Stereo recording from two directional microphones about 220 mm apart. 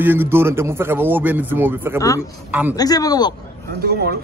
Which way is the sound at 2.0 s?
15° left (ahead or behind).